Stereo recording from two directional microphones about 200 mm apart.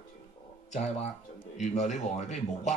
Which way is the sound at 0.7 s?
30° left (ahead or behind).